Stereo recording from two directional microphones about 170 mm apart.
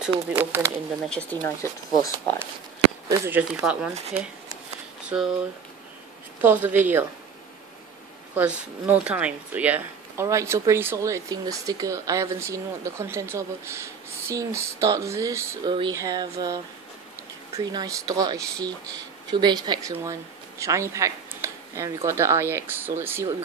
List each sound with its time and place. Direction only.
0.4 s speech: 15° right (ahead or behind)
1.0 s speech: 5° left (ahead or behind)
3.1 s speech: 15° right (ahead or behind)
5.1 s speech: 10° right (ahead or behind)
6.4 s speech: 10° right (ahead or behind)
8.4 s a woman's voice: 10° right (ahead or behind)